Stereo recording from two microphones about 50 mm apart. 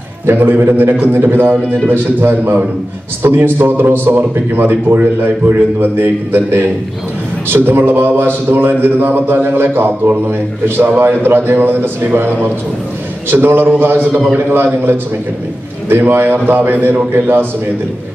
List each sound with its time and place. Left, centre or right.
0.3 s a man's voice: right
11.0 s a man's voice: right